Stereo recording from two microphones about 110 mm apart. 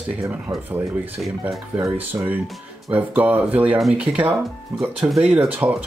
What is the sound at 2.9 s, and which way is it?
Speech, 15° right (ahead or behind).